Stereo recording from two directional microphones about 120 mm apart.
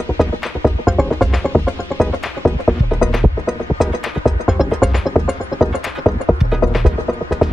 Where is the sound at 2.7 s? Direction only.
5° right (ahead or behind).